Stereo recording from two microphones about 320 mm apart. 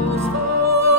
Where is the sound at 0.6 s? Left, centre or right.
Right.